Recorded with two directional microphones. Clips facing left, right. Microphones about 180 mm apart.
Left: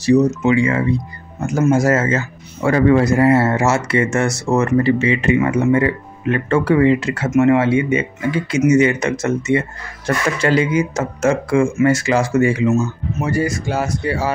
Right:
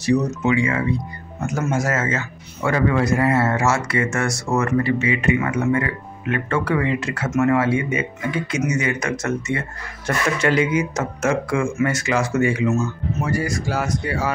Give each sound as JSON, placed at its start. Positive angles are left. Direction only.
{"t": 0.0, "sound": "speech", "side_deg": 30}